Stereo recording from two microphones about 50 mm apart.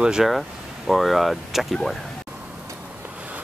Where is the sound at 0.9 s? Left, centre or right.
Centre.